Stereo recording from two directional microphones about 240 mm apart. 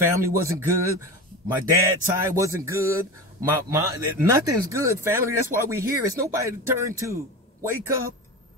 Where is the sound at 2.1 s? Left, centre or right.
Centre.